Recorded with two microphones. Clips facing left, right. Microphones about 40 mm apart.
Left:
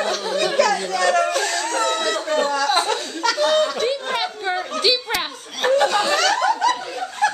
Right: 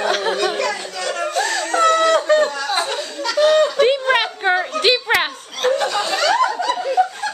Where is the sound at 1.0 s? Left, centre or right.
Left.